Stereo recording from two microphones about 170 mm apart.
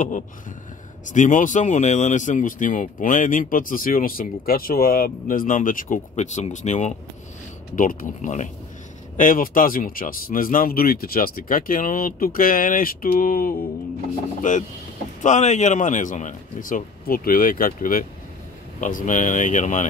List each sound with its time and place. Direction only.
1.0 s speech: 50° left (ahead or behind)
7.7 s speech: 55° left (ahead or behind)